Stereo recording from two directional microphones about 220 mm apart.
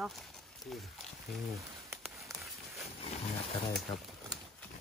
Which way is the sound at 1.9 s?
Centre (ahead or behind).